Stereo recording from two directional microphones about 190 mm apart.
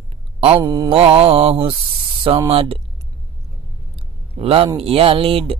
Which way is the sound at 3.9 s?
30° right (ahead or behind).